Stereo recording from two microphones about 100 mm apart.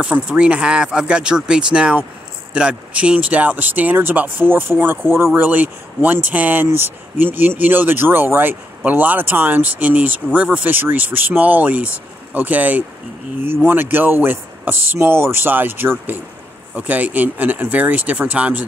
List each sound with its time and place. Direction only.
0.0 s speech: 10° right (ahead or behind)